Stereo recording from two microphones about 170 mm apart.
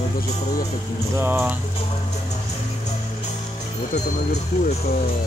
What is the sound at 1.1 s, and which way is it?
Speech, 15° right (ahead or behind).